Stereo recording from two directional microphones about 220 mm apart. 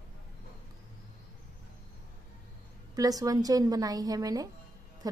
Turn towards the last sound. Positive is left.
turn(degrees=-15)  # may be behind; listen again after turning